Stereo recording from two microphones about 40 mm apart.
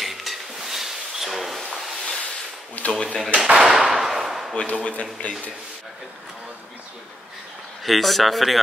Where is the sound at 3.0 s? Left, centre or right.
Left.